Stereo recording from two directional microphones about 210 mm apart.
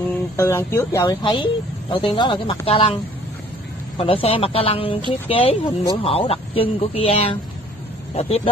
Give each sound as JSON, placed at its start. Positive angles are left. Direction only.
{"t": 0.4, "sound": "speech", "side_deg": 10}
{"t": 1.2, "sound": "speech", "side_deg": 20}